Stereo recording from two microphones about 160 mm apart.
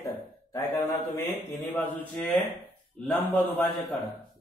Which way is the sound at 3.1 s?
10° left (ahead or behind).